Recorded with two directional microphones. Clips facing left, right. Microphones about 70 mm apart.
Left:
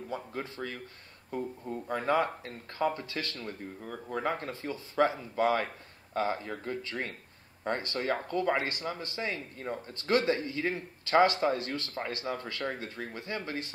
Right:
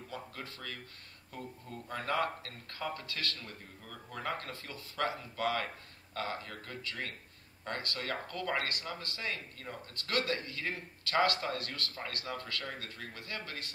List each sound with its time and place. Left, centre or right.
0.1 s speech: left